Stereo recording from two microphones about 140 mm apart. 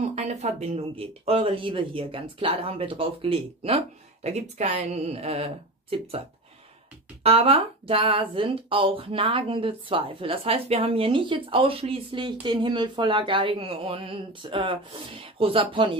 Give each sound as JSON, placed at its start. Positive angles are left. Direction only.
{"t": 0.0, "sound": "speech", "side_deg": -55}
{"t": 7.2, "sound": "speech", "side_deg": -45}